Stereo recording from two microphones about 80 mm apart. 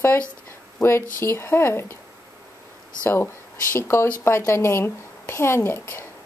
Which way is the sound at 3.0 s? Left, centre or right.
Left.